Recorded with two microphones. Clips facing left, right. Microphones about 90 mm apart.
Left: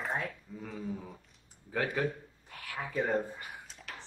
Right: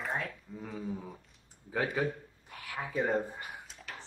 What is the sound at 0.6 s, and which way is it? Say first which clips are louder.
Speech: right 1 dB; 5° right (ahead or behind).